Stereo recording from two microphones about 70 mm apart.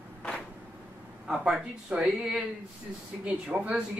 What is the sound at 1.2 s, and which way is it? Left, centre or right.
Speech, centre.